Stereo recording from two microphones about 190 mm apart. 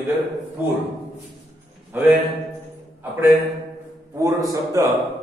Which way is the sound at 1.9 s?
10° right (ahead or behind).